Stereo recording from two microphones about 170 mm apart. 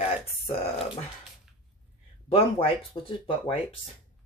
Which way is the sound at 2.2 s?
35° left (ahead or behind).